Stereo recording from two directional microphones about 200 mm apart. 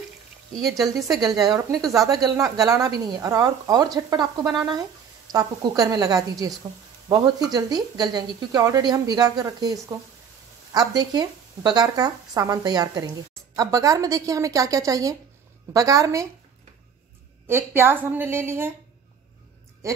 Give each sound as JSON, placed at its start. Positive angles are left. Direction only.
{"t": 1.2, "sound": "a woman's voice", "side_deg": -20}
{"t": 17.5, "sound": "a woman's voice", "side_deg": -10}